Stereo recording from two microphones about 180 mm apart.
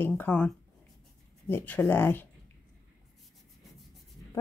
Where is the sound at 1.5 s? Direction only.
10° left (ahead or behind).